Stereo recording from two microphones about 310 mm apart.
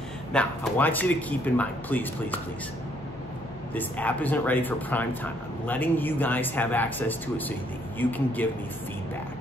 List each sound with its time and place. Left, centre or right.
0.3 s speech: centre
3.7 s speech: centre